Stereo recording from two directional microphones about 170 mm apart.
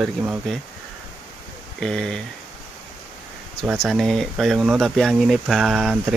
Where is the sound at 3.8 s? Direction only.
Centre (ahead or behind).